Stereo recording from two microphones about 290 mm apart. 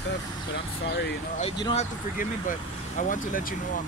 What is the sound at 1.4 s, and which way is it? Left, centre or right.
Speech, left.